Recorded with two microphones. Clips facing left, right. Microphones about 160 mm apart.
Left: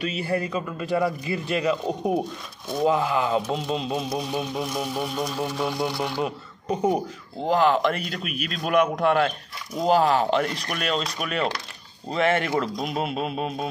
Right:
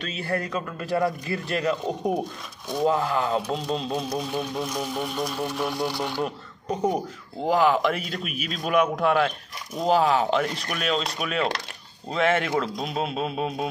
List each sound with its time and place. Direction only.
0.0 s speech: 5° left (ahead or behind)
7.4 s speech: 10° right (ahead or behind)